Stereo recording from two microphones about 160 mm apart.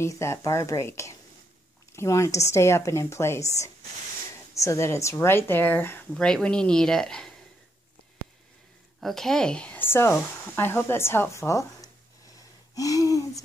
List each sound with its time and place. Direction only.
0.0 s speech: 15° left (ahead or behind)
9.0 s speech: centre (ahead or behind); by 11.9 s 20° left (ahead or behind)
12.7 s gasp: 20° left (ahead or behind)